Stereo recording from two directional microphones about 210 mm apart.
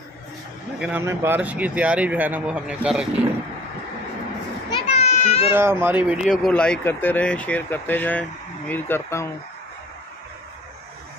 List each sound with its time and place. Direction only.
0.7 s speech: 5° right (ahead or behind)
4.6 s children playing: 25° left (ahead or behind)
5.5 s speech: 10° right (ahead or behind); by 9.3 s 10° left (ahead or behind)